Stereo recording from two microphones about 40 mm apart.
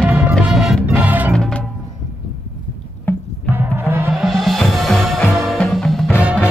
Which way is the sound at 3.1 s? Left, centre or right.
Left.